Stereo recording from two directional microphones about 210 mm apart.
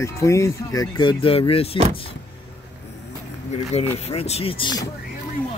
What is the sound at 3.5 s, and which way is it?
Speech, 30° left (ahead or behind).